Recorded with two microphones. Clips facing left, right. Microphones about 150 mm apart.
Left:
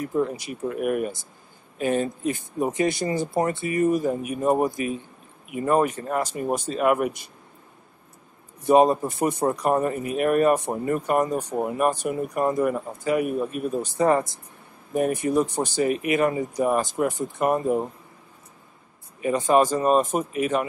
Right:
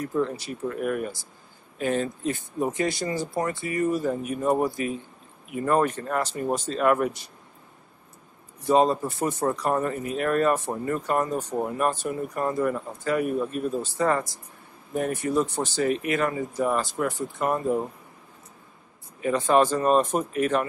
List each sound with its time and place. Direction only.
0.1 s a man's voice: 15° left (ahead or behind)
8.6 s a man's voice: 15° left (ahead or behind)
19.2 s a man's voice: 15° left (ahead or behind)